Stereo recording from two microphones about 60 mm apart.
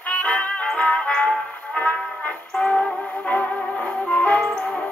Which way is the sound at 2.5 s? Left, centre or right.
Centre.